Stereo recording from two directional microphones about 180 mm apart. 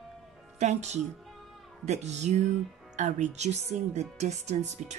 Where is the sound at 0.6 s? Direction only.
40° right (ahead or behind).